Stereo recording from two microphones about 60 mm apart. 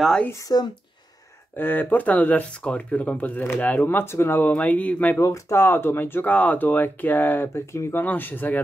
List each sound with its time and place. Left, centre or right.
0.3 s speech: left
1.6 s speech: left
4.5 s speech: left
5.2 s speech: left
6.2 s speech: left
8.0 s speech: left